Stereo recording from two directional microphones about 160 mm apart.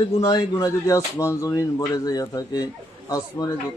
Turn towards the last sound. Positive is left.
turn(degrees=25)  # may be behind; listen again after turning